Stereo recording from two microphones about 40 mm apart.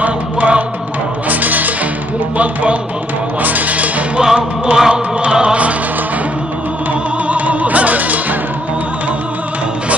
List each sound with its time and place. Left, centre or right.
0.0 s music: right
2.3 s speech: right
3.4 s music: right
4.2 s music: centre
7.2 s music: right